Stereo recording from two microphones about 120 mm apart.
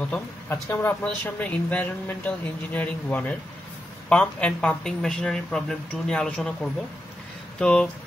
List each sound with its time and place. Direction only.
0.5 s speech: 20° left (ahead or behind)